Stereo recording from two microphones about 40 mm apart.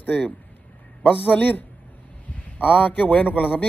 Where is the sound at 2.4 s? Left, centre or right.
Left.